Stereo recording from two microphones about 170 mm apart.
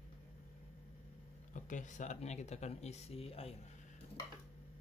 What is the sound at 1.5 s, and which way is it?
Speech, 50° left (ahead or behind).